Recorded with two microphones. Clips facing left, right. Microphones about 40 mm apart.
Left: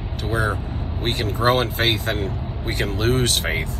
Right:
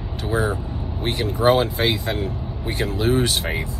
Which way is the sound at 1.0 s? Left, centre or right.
Left.